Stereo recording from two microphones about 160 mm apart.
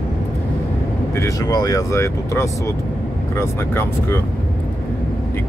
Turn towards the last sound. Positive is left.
turn(degrees=15)  # may be behind; listen again after turning